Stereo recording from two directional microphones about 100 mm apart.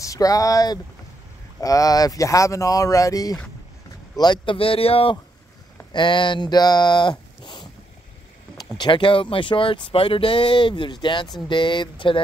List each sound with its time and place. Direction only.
0.0 s speech: 35° left (ahead or behind)
4.2 s speech: 45° left (ahead or behind)
4.6 s speech: 70° left (ahead or behind)
5.9 s speech: 55° left (ahead or behind)
8.7 s speech: 55° left (ahead or behind)